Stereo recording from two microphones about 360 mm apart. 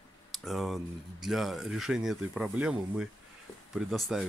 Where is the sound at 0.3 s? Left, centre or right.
Centre.